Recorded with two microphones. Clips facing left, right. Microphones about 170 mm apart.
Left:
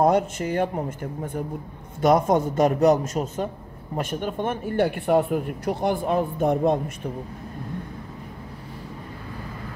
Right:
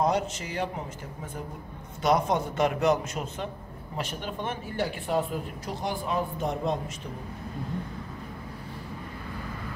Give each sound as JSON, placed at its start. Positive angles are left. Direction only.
{"t": 0.0, "sound": "a man's voice", "side_deg": 55}